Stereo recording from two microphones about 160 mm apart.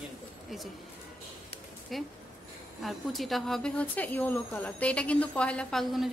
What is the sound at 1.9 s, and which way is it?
A woman's voice, centre (ahead or behind).